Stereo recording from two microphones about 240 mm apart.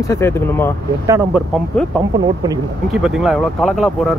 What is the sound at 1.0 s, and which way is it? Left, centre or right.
Speech, centre.